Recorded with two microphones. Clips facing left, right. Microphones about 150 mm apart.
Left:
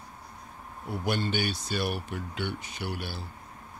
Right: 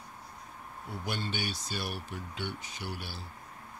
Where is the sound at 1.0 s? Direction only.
65° left (ahead or behind).